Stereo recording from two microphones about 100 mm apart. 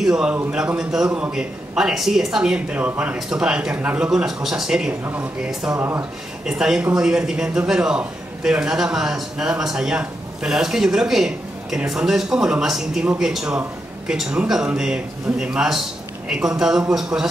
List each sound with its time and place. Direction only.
0.0 s a man's voice: 10° right (ahead or behind)
5.0 s a man's voice: 15° right (ahead or behind)
5.5 s a man's voice: 5° right (ahead or behind)
5.8 s speech: 25° right (ahead or behind)
6.4 s a man's voice: 5° right (ahead or behind)